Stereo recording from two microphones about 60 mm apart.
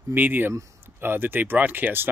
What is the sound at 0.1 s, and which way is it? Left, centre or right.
Speech, right.